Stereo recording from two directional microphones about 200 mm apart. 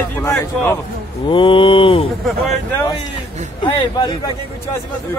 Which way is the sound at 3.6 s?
25° left (ahead or behind).